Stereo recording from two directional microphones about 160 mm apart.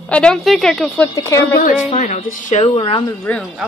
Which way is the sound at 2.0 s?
55° left (ahead or behind).